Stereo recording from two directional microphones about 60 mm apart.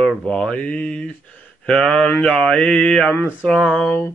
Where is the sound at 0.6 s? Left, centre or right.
Left.